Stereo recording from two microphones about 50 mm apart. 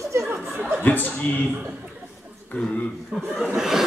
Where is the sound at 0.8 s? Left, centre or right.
Left.